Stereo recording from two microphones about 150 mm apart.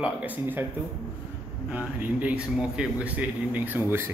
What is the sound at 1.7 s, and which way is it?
A man's voice, 10° right (ahead or behind).